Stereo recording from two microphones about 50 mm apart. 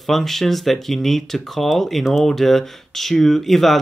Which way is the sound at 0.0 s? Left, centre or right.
Centre.